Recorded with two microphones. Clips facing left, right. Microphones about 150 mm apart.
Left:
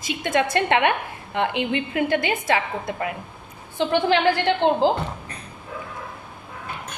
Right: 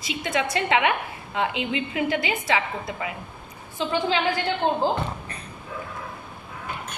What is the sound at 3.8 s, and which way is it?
A woman's voice, 65° left (ahead or behind).